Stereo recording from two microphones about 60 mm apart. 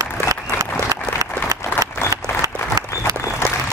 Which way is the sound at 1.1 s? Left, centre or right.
Right.